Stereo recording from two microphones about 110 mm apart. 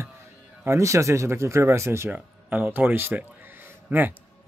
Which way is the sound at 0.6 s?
25° right (ahead or behind).